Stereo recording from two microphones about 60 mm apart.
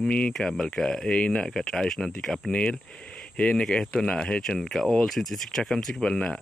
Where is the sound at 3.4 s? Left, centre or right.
Left.